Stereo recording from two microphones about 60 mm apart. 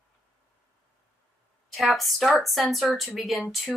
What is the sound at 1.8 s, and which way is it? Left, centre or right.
Speech, centre.